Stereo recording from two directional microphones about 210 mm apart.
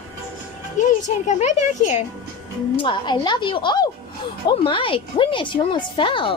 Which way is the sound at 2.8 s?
20° left (ahead or behind).